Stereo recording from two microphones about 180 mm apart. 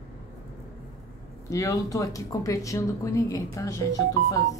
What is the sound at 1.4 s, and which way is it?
Speech, 20° left (ahead or behind).